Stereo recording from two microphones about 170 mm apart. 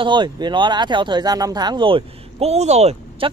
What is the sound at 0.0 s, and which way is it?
Speech, 25° right (ahead or behind).